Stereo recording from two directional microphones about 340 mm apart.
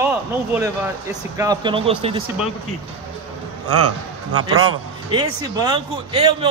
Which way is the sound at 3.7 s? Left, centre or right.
Right.